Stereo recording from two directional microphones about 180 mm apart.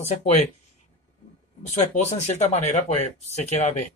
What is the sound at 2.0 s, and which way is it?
Speech, 40° left (ahead or behind).